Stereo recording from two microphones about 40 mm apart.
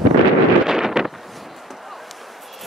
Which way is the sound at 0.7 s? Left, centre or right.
Centre.